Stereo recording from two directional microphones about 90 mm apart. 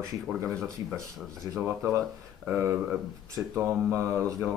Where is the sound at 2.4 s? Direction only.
30° right (ahead or behind).